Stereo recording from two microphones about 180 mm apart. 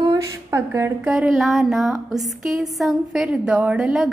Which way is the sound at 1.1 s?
Centre (ahead or behind).